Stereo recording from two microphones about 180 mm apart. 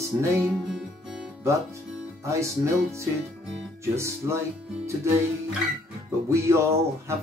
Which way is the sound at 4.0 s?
15° right (ahead or behind).